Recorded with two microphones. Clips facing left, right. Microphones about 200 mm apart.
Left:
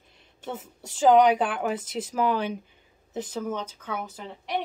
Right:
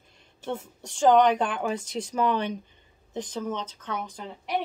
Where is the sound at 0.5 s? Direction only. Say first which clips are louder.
Right 3 dB; 5° left (ahead or behind).